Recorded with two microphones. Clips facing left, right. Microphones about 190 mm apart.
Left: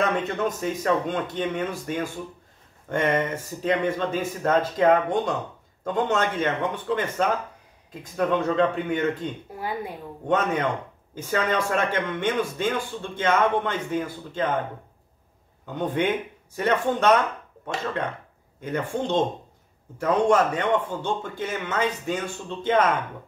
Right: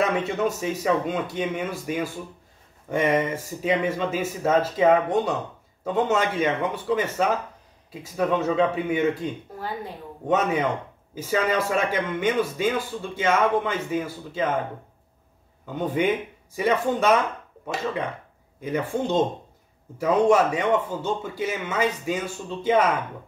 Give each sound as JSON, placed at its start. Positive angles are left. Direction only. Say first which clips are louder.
{"t": 0.0, "sound": "speech", "louder": "right 1 dB", "side_deg": -5}
{"t": 9.6, "sound": "speech", "louder": "left 4 dB", "side_deg": 10}
{"t": 10.2, "sound": "speech", "louder": "right 1 dB", "side_deg": -10}
{"t": 15.6, "sound": "a man's voice", "louder": "right 1 dB", "side_deg": -5}